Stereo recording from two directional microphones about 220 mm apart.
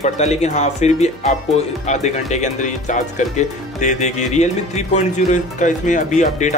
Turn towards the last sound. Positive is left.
turn(degrees=35)  # may be behind; listen again after turning